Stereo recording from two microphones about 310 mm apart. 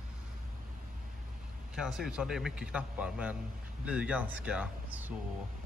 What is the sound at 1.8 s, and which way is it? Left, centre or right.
A man's voice, centre.